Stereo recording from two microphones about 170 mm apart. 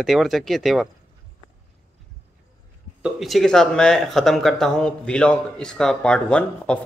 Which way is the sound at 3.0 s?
Centre (ahead or behind).